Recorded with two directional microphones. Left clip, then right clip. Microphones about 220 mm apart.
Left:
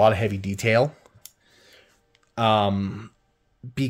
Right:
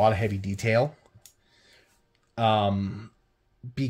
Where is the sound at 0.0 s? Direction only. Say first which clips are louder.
Left 4 dB; 20° left (ahead or behind).